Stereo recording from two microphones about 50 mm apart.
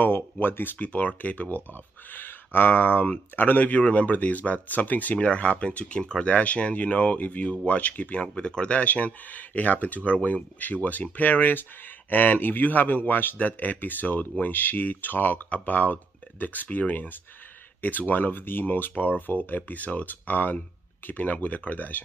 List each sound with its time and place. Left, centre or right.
0.0 s speech: left
0.7 s speech: left